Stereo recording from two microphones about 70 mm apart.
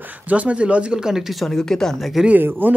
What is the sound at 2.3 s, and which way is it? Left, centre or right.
Speech, right.